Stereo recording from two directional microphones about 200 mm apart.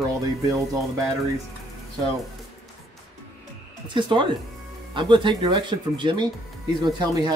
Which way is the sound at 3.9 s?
25° right (ahead or behind).